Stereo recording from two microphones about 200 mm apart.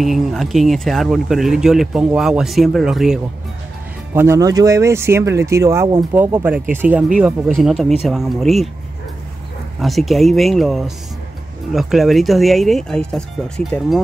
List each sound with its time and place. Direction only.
0.0 s speech: centre (ahead or behind)
4.1 s speech: 10° right (ahead or behind)
9.8 s speech: centre (ahead or behind)